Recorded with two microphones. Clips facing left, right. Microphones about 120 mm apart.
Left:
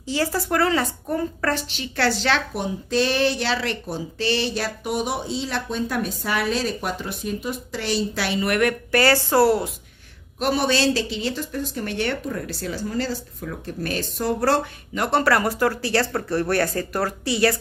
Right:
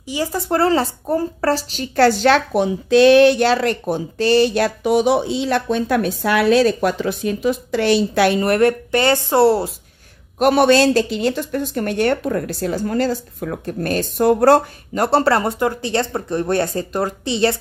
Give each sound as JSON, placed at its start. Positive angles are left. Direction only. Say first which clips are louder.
{"t": 0.0, "sound": "speech", "louder": "right 1 dB", "side_deg": -15}
{"t": 0.5, "sound": "a woman's voice", "louder": "right 7 dB", "side_deg": -30}
{"t": 2.5, "sound": "speech", "louder": "right 9 dB", "side_deg": -80}
{"t": 8.5, "sound": "speech", "louder": "right 6 dB", "side_deg": -30}
{"t": 10.4, "sound": "speech", "louder": "right 8 dB", "side_deg": -60}
{"t": 15.0, "sound": "speech", "louder": "right 3 dB", "side_deg": -30}